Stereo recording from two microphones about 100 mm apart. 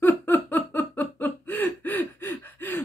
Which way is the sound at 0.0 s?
20° left (ahead or behind).